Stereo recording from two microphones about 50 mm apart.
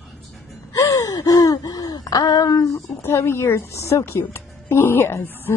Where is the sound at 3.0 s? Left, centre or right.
Left.